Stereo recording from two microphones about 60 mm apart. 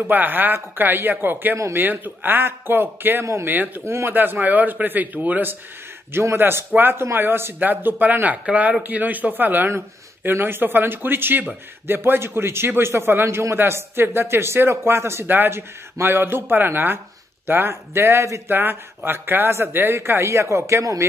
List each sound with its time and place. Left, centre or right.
0.0 s speech: right
3.8 s speech: right
4.1 s speech: right
6.1 s speech: right
9.7 s speech: right
15.2 s speech: right
18.5 s speech: right